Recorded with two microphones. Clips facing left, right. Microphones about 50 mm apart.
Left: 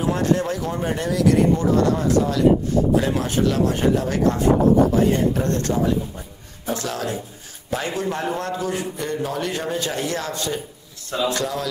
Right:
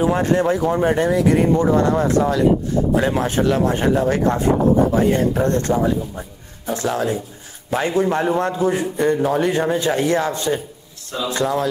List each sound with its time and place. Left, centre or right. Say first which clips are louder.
0.0 s speech: right 4 dB; right